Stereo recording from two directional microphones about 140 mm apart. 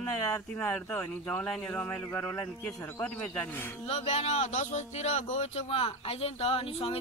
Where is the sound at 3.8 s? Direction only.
45° left (ahead or behind).